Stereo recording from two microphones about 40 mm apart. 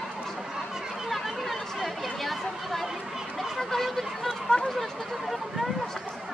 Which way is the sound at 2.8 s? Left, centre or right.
Centre.